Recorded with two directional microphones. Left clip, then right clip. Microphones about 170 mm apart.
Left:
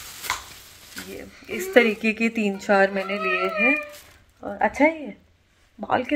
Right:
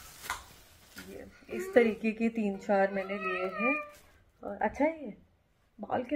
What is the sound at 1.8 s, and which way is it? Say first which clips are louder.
Speech: left 8 dB; centre (ahead or behind).